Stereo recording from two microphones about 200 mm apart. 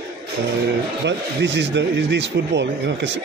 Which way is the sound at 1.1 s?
60° right (ahead or behind).